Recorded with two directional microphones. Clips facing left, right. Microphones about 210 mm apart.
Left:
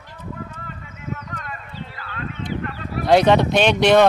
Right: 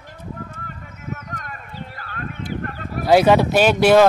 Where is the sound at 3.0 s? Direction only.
5° right (ahead or behind).